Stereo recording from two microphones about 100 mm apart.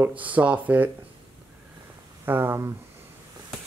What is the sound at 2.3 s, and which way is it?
Speech, 20° right (ahead or behind).